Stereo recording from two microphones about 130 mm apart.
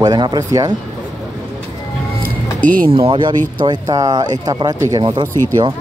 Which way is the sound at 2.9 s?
45° right (ahead or behind).